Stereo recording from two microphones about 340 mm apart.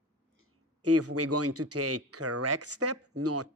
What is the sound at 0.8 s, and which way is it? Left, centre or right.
Speech, right.